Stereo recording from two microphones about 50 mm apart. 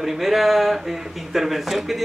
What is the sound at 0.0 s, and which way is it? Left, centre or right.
A man's voice, centre.